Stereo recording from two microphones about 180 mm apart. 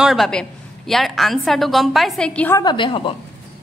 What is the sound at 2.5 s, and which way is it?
Speech, 25° left (ahead or behind).